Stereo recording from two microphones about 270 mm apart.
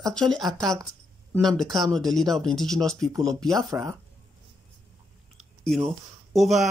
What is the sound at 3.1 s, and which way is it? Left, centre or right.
Speech, centre.